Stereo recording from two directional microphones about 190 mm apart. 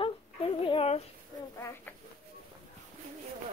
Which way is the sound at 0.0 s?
30° left (ahead or behind).